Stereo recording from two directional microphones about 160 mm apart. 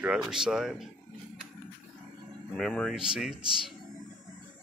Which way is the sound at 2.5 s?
5° left (ahead or behind).